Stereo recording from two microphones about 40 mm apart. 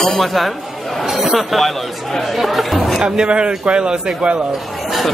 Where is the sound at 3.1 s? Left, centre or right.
Right.